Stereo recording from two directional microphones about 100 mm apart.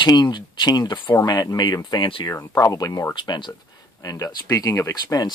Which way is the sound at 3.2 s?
50° left (ahead or behind).